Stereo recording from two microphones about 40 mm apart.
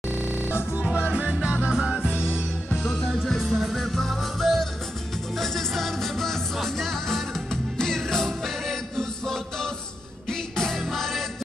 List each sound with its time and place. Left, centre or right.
1.4 s music: right
1.7 s music: centre
2.8 s music: centre
3.3 s music: centre
3.7 s music: centre